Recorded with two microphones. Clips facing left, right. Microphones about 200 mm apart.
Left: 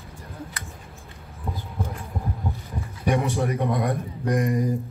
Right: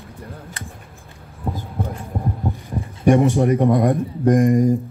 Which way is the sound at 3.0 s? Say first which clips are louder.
Right 9 dB; 50° right (ahead or behind).